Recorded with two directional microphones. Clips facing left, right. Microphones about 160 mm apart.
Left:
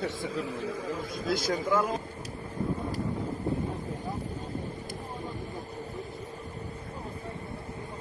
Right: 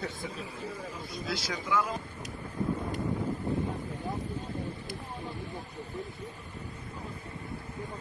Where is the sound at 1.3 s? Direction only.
50° left (ahead or behind).